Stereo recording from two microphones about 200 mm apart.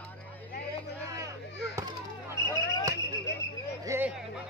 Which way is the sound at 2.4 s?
20° right (ahead or behind).